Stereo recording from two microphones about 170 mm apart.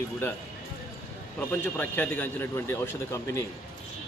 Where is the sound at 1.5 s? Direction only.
10° left (ahead or behind).